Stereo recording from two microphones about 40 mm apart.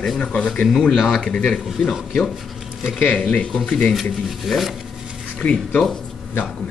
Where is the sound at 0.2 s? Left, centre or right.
Left.